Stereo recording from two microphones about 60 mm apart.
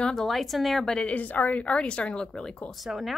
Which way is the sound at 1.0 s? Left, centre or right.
Left.